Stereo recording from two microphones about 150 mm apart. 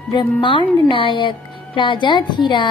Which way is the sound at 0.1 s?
30° left (ahead or behind).